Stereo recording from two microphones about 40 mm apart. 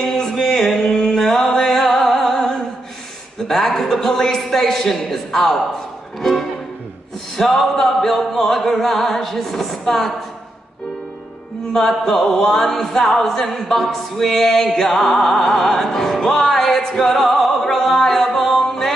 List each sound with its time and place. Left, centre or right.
0.0 s music: centre
7.3 s music: centre
11.7 s music: centre
13.0 s music: centre